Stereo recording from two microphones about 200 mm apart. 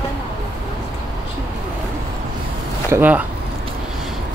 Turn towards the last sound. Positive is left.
turn(degrees=-10)  # may be behind; listen again after turning